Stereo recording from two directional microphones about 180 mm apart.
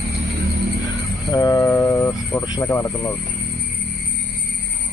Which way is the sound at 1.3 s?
20° left (ahead or behind).